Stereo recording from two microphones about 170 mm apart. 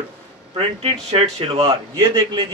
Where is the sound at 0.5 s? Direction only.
35° right (ahead or behind).